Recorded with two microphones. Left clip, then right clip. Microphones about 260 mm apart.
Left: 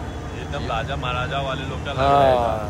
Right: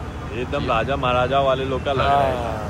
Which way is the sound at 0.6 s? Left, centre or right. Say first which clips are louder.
Right 5 dB; right.